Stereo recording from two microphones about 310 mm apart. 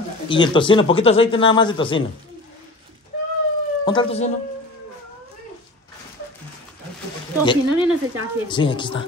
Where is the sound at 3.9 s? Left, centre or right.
Centre.